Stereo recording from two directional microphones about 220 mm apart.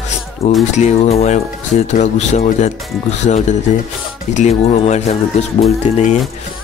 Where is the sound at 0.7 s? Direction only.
30° left (ahead or behind).